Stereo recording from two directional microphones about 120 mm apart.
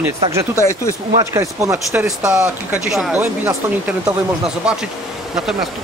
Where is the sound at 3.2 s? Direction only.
20° right (ahead or behind).